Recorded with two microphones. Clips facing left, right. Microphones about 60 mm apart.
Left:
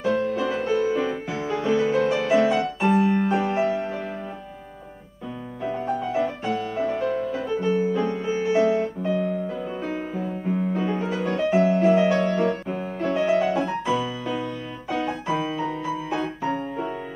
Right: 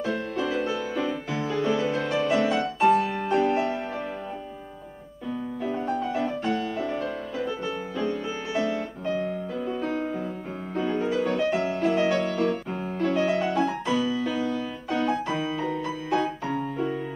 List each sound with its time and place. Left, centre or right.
0.0 s music: centre
2.3 s music: centre
2.9 s music: centre
6.1 s music: centre
9.0 s music: centre
9.8 s music: centre